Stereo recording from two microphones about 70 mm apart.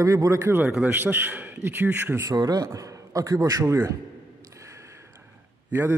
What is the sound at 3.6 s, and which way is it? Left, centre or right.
Speech, right.